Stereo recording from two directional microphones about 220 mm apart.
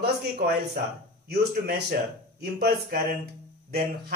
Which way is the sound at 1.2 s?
45° right (ahead or behind).